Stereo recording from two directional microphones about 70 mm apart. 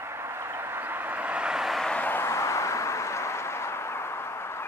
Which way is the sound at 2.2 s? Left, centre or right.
Left.